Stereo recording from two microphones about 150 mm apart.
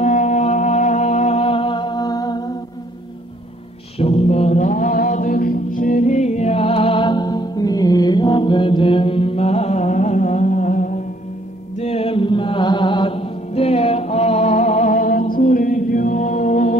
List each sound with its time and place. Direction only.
0.0 s music: 50° left (ahead or behind); by 2.5 s 25° left (ahead or behind)
4.0 s music: 40° left (ahead or behind)
11.8 s mantra: 40° left (ahead or behind)